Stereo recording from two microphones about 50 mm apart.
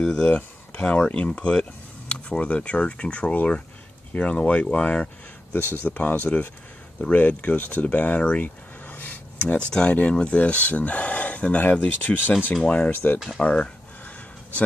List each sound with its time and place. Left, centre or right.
0.0 s speech: centre
0.3 s speech: left
8.8 s a sound: left
9.8 s speech: left
12.9 s speech: left
13.4 s a sound: left